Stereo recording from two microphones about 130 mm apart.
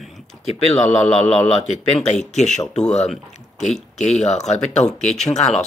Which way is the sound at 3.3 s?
60° left (ahead or behind).